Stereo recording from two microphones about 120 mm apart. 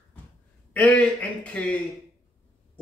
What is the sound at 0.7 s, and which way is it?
Speech, 10° left (ahead or behind).